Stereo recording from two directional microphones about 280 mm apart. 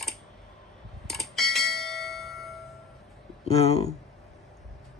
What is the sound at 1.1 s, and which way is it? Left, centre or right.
Bell, centre.